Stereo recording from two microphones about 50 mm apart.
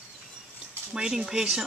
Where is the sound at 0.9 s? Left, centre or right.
Centre.